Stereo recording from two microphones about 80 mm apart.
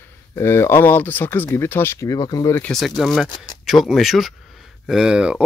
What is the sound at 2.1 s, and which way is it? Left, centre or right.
Speech, left.